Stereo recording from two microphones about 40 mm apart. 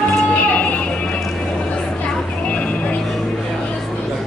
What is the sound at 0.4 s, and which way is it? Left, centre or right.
Music, left.